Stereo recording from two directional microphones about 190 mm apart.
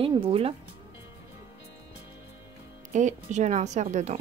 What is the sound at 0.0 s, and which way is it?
Speech, 30° right (ahead or behind).